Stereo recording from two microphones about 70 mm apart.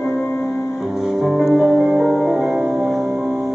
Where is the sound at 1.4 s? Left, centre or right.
Centre.